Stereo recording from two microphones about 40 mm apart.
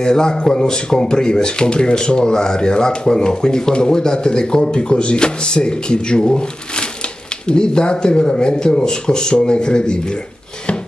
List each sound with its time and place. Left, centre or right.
0.0 s speech: centre